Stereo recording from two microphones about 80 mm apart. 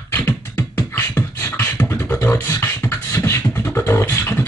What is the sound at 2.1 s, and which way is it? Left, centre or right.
Beatboxing, left.